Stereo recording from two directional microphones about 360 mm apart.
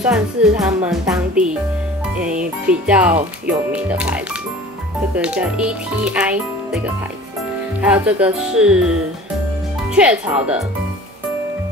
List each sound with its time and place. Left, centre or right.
0.0 s speech: centre
2.7 s speech: centre
7.8 s speech: centre